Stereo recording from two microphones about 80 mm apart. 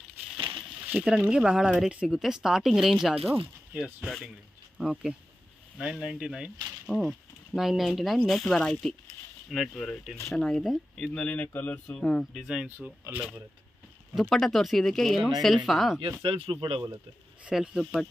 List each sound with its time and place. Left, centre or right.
0.8 s speech: centre
11.1 s speech: centre
12.0 s speech: centre
12.6 s speech: right
14.3 s speech: centre
16.2 s speech: right
17.5 s speech: centre